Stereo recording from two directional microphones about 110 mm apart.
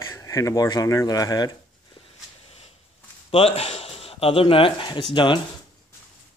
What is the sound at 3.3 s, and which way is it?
Speech, 60° left (ahead or behind).